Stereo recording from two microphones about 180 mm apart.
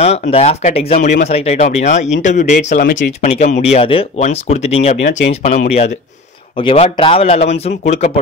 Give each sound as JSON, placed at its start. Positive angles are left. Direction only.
{"t": 0.0, "sound": "speech", "side_deg": 35}